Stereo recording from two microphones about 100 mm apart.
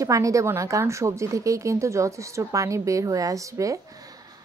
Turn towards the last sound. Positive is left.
turn(degrees=-35)  # may be behind; listen again after turning